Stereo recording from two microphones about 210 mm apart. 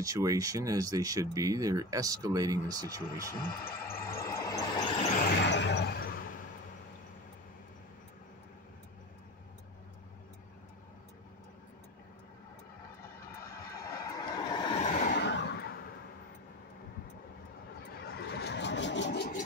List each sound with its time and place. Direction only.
0.0 s speech: 15° right (ahead or behind)
3.4 s speech: 45° left (ahead or behind)
4.3 s vehicle: 15° left (ahead or behind)
5.2 s a sound: 55° left (ahead or behind)
13.7 s vehicle: 15° left (ahead or behind)
15.0 s a sound: 55° left (ahead or behind)
18.0 s vehicle: 50° left (ahead or behind)